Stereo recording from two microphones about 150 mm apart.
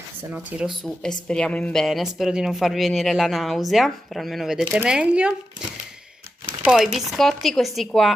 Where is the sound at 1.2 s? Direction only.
5° left (ahead or behind).